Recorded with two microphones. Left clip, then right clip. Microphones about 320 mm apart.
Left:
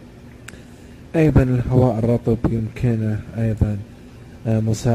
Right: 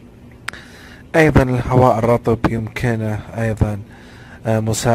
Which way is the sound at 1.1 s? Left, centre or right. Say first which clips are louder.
Right 5 dB; right.